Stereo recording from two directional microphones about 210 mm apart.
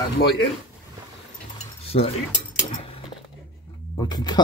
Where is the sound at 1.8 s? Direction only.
30° left (ahead or behind).